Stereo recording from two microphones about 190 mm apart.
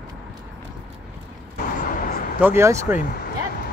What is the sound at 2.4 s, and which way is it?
Speech, 15° right (ahead or behind).